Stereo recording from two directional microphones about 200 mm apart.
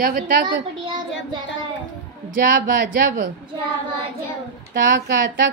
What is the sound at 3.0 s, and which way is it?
Speech, 40° right (ahead or behind).